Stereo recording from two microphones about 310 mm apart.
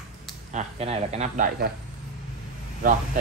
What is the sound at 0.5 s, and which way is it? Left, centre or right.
Speech, centre.